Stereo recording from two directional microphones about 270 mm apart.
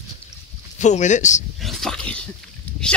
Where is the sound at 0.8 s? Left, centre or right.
Left.